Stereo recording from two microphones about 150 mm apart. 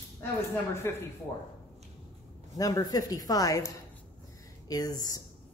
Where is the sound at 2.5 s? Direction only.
25° left (ahead or behind).